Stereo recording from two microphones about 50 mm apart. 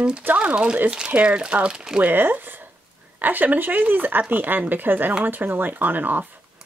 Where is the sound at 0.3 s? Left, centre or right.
Right.